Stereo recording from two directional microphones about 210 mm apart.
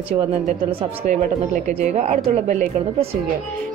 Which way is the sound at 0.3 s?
25° right (ahead or behind).